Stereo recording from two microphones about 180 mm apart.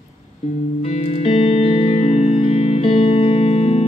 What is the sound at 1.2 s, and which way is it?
Music, 35° left (ahead or behind).